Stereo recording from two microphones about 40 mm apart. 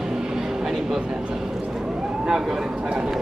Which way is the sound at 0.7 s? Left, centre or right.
Centre.